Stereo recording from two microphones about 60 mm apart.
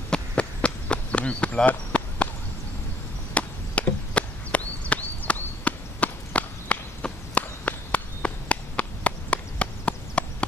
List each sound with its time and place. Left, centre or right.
0.1 s run: centre
3.3 s chop: left